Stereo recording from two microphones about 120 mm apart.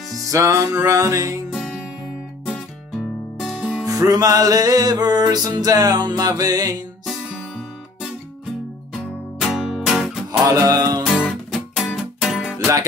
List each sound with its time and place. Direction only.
0.3 s music: 25° right (ahead or behind)
3.3 s music: centre (ahead or behind)
3.8 s music: 30° right (ahead or behind)
8.9 s music: centre (ahead or behind)
10.7 s music: 30° right (ahead or behind)
11.1 s music: centre (ahead or behind)
12.5 s music: 25° right (ahead or behind)